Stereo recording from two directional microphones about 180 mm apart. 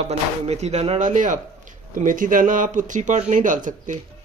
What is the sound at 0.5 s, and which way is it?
Speech, 35° right (ahead or behind).